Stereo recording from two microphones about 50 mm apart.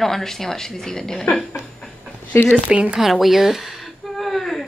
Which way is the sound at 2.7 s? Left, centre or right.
Right.